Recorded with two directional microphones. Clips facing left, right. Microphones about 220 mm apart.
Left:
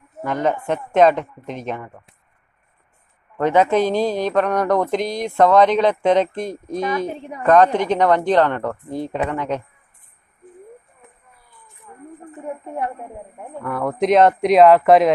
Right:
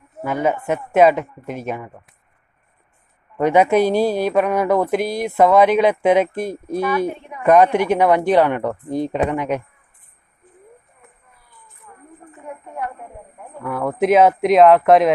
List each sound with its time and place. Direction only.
0.2 s speech: 5° right (ahead or behind)
3.3 s speech: 10° right (ahead or behind)
7.2 s speech: 35° left (ahead or behind)
7.4 s speech: 10° right (ahead or behind)
11.9 s a sound: 20° left (ahead or behind)
13.6 s speech: centre (ahead or behind)